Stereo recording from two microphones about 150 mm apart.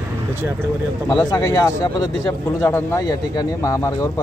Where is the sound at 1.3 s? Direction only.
25° left (ahead or behind).